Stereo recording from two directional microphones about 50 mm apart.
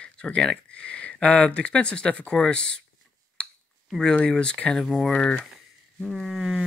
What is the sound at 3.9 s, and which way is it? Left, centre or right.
Speech, centre.